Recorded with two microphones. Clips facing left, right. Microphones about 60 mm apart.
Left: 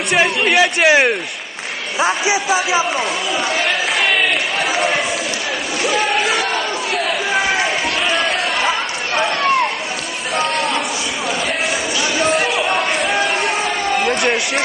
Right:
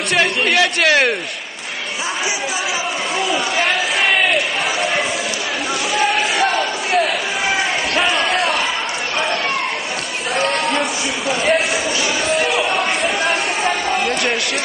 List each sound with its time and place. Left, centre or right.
0.1 s speech: centre
2.0 s a man's voice: left
12.5 s a sound: centre